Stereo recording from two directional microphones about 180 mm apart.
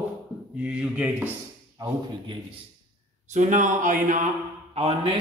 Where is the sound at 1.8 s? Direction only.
25° right (ahead or behind).